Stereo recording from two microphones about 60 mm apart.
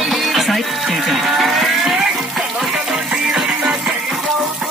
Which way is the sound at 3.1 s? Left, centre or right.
Centre.